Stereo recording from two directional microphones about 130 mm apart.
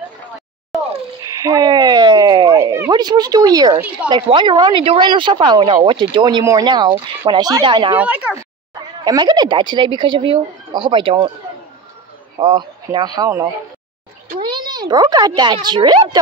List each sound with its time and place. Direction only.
1.2 s a sound: 25° right (ahead or behind)
2.5 s a sound: 20° right (ahead or behind)
2.9 s speech: 30° right (ahead or behind)
7.9 s speech: 10° right (ahead or behind)
9.0 s speech: 35° right (ahead or behind)
12.4 s speech: 35° right (ahead or behind)